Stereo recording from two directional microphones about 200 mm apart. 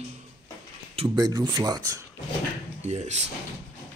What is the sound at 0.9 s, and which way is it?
Speech, 25° right (ahead or behind).